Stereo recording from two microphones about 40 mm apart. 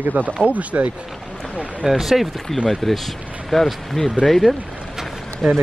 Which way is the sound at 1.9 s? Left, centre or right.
Centre.